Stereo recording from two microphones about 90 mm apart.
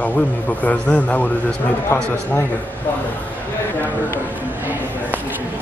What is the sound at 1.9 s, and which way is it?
Speech, 25° left (ahead or behind).